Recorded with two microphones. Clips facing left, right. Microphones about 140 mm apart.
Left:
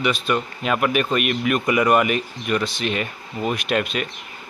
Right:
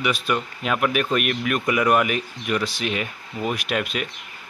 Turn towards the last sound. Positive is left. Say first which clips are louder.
# left 3 dB
turn(degrees=-5)  # may be behind; listen again after turning